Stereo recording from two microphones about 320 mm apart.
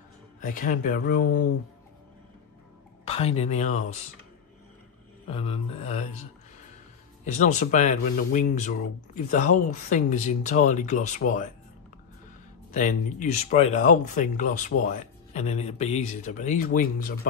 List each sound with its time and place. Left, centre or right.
0.5 s speech: left
3.1 s speech: centre
5.2 s speech: centre
7.3 s speech: left
12.7 s speech: left